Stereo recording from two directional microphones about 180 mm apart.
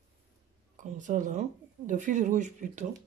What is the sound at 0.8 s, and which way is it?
Speech, 45° right (ahead or behind).